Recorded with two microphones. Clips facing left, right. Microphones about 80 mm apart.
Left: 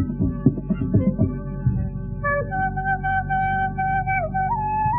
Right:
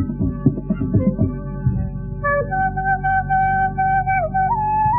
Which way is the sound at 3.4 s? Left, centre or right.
Centre.